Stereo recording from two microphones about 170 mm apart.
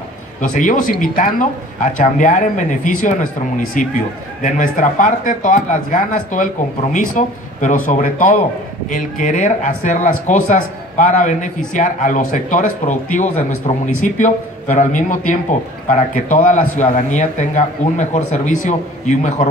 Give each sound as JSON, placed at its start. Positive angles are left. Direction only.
{"t": 0.4, "sound": "speech", "side_deg": 50}